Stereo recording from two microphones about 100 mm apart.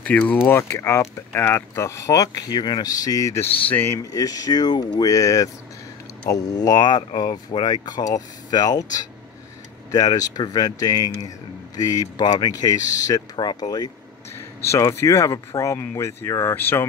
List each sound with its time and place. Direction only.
0.0 s speech: 15° left (ahead or behind); by 3.4 s 35° left (ahead or behind)
3.7 s speech: 25° left (ahead or behind)
4.0 s speech: 40° left (ahead or behind)
14.6 s speech: 30° left (ahead or behind)